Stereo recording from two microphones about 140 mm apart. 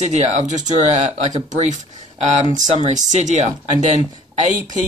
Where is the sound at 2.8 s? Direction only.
60° right (ahead or behind).